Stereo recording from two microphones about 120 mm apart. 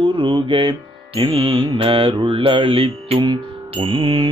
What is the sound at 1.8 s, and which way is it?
Mantra, 45° right (ahead or behind).